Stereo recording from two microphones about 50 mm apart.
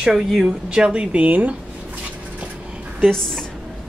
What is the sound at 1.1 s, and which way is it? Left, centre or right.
Speech, right.